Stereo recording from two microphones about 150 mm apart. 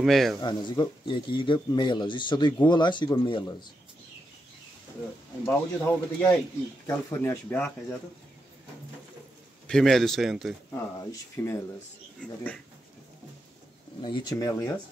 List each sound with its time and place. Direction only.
0.0 s speech: centre (ahead or behind)
0.4 s speech: 30° left (ahead or behind)
5.4 s speech: 10° left (ahead or behind)
9.7 s speech: 5° left (ahead or behind)
10.7 s speech: 15° left (ahead or behind)
14.0 s speech: 25° left (ahead or behind)